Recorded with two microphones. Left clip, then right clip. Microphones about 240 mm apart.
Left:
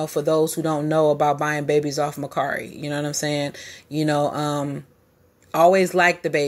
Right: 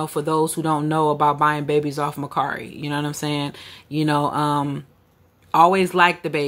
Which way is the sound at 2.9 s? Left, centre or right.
Right.